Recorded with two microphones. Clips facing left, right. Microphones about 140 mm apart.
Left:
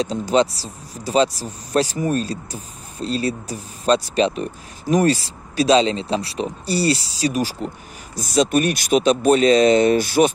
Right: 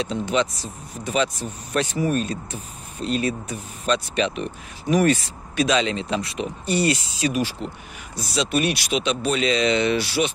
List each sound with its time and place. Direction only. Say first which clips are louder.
0.0 s speech: left 5 dB; 40° left (ahead or behind)